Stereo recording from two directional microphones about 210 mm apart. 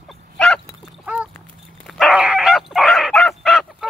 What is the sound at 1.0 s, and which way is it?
Dog, 5° right (ahead or behind).